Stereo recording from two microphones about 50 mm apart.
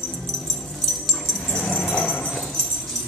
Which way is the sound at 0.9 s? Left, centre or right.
Centre.